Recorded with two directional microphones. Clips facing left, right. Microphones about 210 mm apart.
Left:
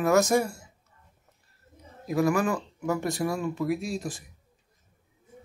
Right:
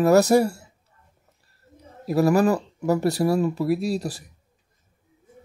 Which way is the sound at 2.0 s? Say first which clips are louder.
Right 6 dB; 35° right (ahead or behind).